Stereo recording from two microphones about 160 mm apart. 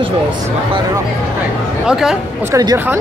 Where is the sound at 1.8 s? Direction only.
5° right (ahead or behind).